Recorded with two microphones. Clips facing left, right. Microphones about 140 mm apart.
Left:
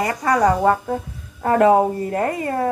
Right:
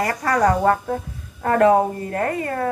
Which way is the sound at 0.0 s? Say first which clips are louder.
Left 1 dB; 15° left (ahead or behind).